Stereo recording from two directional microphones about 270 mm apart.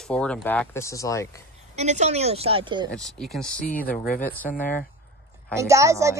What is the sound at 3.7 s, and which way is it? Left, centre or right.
Speech, left.